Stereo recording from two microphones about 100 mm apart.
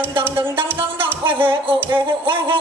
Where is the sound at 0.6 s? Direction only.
65° right (ahead or behind).